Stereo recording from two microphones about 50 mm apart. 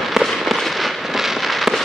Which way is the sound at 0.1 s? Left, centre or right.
Centre.